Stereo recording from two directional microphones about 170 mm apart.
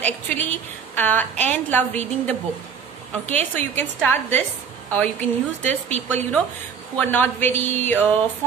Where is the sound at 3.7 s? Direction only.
10° left (ahead or behind).